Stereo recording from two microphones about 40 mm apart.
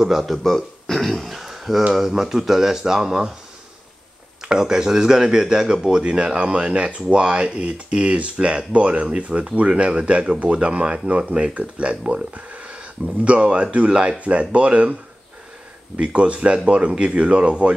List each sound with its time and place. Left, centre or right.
0.2 s a man's voice: centre
4.5 s speech: centre; by 15.0 s right
16.0 s speech: right